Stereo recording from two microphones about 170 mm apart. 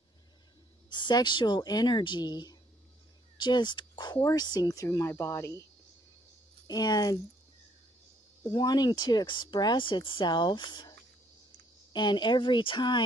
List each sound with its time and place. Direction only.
0.8 s speech: 25° left (ahead or behind)
6.7 s speech: 25° left (ahead or behind)
8.5 s speech: 25° left (ahead or behind)